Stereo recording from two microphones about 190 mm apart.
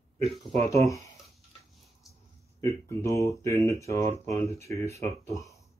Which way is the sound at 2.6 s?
15° left (ahead or behind).